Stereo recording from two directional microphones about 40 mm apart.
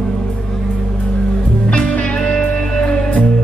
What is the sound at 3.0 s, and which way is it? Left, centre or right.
Music, left.